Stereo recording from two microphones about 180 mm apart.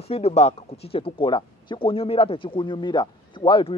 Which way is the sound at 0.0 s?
35° left (ahead or behind).